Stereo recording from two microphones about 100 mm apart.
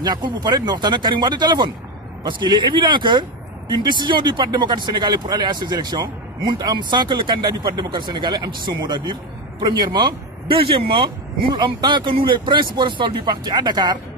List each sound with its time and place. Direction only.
0.0 s speech: 45° right (ahead or behind)